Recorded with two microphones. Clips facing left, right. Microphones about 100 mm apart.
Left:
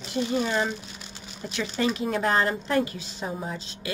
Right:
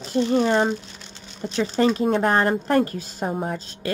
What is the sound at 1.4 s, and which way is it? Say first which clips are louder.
Speech: right 7 dB; 35° right (ahead or behind).